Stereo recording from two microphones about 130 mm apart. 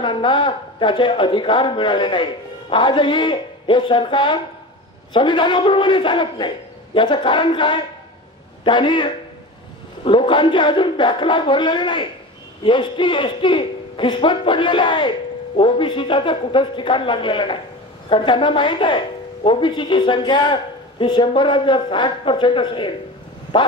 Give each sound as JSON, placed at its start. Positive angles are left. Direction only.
{"t": 0.0, "sound": "a man's voice", "side_deg": 40}